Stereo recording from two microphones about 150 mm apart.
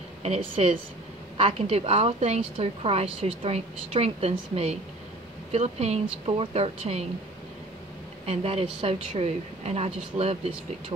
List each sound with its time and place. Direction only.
0.2 s a woman's voice: 45° right (ahead or behind)
8.3 s speech: 40° right (ahead or behind)